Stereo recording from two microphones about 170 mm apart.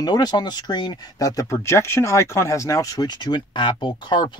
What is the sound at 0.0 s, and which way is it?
Speech, 25° left (ahead or behind).